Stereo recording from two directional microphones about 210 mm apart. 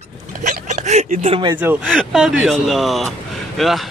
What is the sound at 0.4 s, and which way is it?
Hiccup, 35° right (ahead or behind).